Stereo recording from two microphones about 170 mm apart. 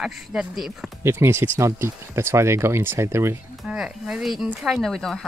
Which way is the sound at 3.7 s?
5° right (ahead or behind).